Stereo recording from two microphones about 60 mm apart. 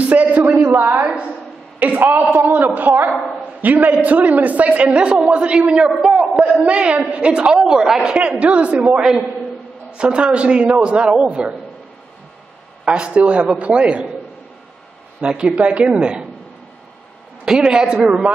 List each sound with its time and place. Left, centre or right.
0.0 s a sound: right
0.5 s a sound: right
1.8 s a man's voice: right
5.9 s a man's voice: centre
6.6 s a man's voice: right
12.8 s a man's voice: centre
15.1 s a man's voice: centre
17.5 s a man's voice: centre